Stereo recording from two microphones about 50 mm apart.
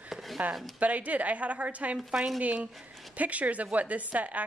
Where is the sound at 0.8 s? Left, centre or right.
Right.